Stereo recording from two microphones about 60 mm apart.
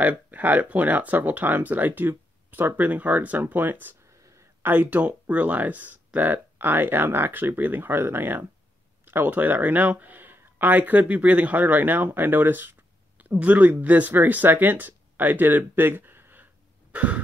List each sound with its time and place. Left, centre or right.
0.0 s speech: right
4.1 s a sound: right
4.6 s speech: right
16.9 s cough: right